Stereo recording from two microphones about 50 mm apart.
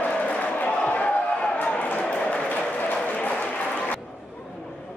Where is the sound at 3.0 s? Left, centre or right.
Left.